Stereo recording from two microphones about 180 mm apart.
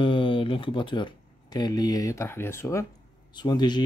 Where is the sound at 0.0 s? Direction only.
30° left (ahead or behind).